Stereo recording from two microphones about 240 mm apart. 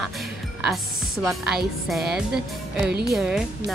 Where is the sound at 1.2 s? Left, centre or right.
Centre.